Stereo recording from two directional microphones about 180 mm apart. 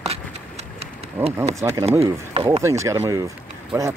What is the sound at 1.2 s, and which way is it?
Speech, 10° right (ahead or behind).